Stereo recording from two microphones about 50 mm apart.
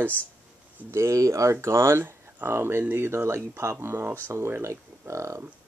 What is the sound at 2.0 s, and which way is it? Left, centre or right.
Speech, right.